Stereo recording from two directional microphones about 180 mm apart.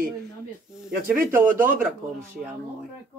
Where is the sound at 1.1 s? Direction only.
50° right (ahead or behind).